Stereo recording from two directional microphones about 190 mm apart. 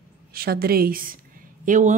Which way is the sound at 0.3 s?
50° right (ahead or behind).